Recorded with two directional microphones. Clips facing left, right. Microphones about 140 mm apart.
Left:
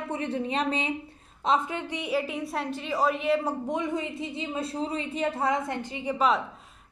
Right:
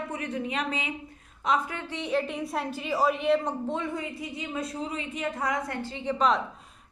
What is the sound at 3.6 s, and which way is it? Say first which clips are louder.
Speech: left 2 dB; 15° left (ahead or behind).